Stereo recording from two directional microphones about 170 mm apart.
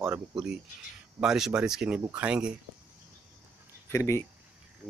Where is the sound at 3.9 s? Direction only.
15° left (ahead or behind).